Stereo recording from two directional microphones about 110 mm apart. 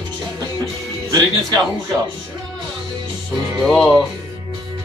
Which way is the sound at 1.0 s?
35° right (ahead or behind).